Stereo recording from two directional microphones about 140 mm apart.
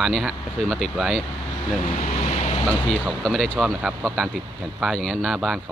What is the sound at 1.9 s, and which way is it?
Vehicle, 50° left (ahead or behind).